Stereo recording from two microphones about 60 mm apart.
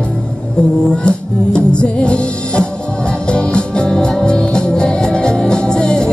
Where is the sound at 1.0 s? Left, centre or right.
Centre.